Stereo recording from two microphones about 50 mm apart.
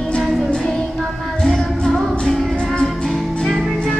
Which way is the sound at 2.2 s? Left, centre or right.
Centre.